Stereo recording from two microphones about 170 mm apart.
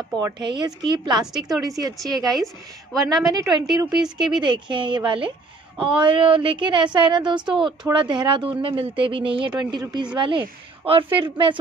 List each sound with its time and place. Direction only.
0.2 s speech: 25° right (ahead or behind)
1.2 s a woman's voice: centre (ahead or behind)
1.6 s speech: 20° right (ahead or behind)
2.3 s a woman's voice: centre (ahead or behind)
3.3 s speech: 20° right (ahead or behind)